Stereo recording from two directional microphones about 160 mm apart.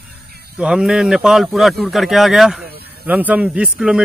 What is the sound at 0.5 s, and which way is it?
Speech, 5° right (ahead or behind).